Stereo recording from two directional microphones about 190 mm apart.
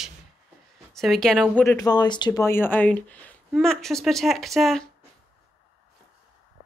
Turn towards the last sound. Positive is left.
turn(degrees=0)  # may be behind; listen again after turning